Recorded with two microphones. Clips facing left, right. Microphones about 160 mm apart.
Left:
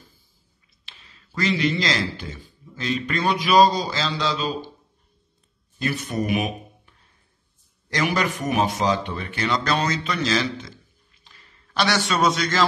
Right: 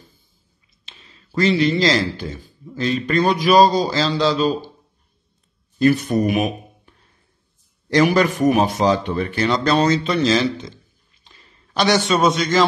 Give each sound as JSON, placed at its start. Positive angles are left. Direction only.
{"t": 0.8, "sound": "a man's voice", "side_deg": -30}
{"t": 5.8, "sound": "a man's voice", "side_deg": -40}
{"t": 7.9, "sound": "a man's voice", "side_deg": -35}
{"t": 11.8, "sound": "a man's voice", "side_deg": -20}